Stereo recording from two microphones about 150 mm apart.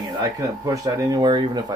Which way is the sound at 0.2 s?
20° right (ahead or behind).